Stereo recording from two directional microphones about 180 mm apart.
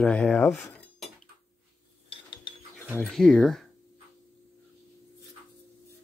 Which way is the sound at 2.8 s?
Centre (ahead or behind).